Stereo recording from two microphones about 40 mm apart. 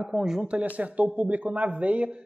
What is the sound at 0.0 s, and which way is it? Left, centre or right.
Speech, centre.